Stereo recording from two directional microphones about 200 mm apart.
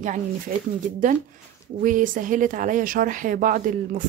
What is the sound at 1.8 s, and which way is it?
Speech, 40° right (ahead or behind).